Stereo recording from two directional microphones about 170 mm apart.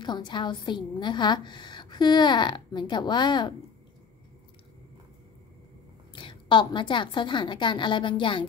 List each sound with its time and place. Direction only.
0.0 s a woman's voice: 25° left (ahead or behind)
6.1 s a woman's voice: 30° left (ahead or behind)